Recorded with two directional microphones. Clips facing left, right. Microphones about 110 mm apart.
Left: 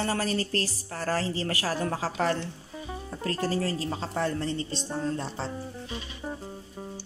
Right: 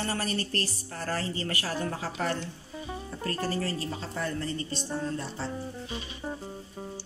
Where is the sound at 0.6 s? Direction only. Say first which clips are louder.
Left 2 dB; 90° left.